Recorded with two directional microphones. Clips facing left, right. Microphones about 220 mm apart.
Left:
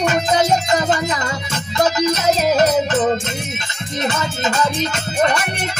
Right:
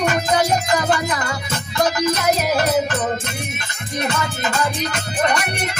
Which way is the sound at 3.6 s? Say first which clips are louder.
Even; 20° left (ahead or behind).